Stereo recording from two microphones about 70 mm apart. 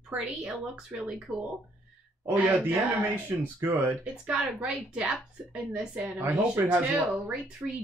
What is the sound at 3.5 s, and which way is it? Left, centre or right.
Speech, right.